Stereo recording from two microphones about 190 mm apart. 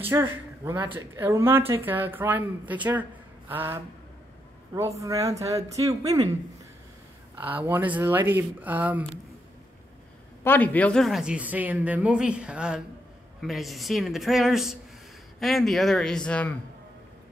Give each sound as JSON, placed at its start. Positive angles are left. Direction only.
{"t": 0.1, "sound": "speech", "side_deg": -10}
{"t": 7.3, "sound": "speech", "side_deg": -10}
{"t": 10.4, "sound": "a woman's voice", "side_deg": 10}